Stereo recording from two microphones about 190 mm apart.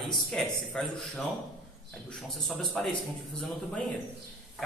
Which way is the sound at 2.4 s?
Centre (ahead or behind).